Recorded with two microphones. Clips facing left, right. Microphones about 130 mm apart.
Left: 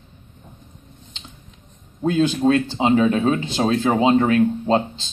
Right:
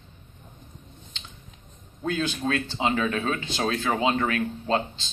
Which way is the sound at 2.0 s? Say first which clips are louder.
Left 9 dB; 30° left (ahead or behind).